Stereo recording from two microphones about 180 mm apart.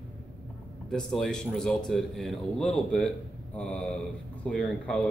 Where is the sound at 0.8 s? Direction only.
5° left (ahead or behind).